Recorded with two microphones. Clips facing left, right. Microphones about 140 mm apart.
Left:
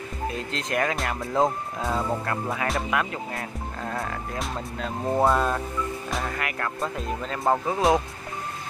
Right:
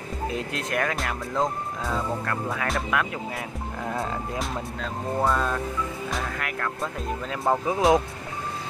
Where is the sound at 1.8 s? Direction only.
20° left (ahead or behind).